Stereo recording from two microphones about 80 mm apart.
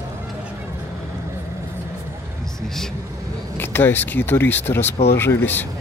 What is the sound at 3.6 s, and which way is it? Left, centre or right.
Speech, left.